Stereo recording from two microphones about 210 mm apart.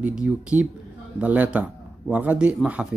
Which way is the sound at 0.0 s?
5° right (ahead or behind).